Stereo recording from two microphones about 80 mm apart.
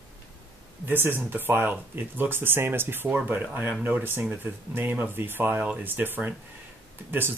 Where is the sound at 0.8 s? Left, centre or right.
Right.